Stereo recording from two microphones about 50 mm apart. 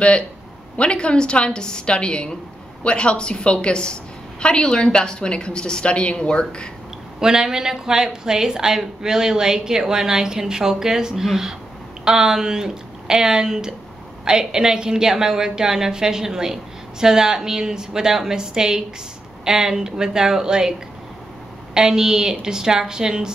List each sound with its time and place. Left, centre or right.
0.7 s a woman's voice: left
7.2 s a woman's voice: centre
21.7 s a woman's voice: centre